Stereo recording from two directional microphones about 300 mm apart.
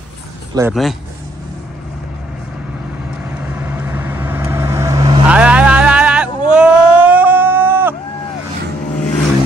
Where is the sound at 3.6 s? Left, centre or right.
Centre.